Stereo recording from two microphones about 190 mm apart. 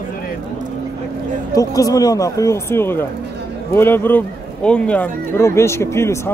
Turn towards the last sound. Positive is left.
turn(degrees=15)  # may be behind; listen again after turning